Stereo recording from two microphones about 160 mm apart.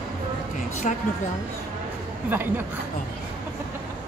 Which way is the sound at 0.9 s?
45° left (ahead or behind).